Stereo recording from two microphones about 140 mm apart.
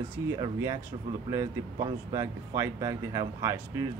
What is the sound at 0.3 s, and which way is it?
Speech, 25° right (ahead or behind).